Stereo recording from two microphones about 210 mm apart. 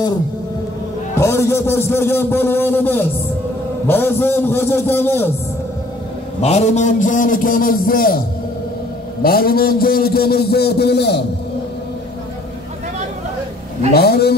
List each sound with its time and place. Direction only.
1.1 s a man's voice: 15° left (ahead or behind)
6.4 s a man's voice: 30° left (ahead or behind)
9.2 s a man's voice: 45° left (ahead or behind)
13.9 s a man's voice: 50° left (ahead or behind)